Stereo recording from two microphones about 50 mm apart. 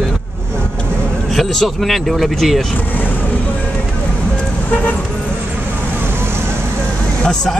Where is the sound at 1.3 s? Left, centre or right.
Centre.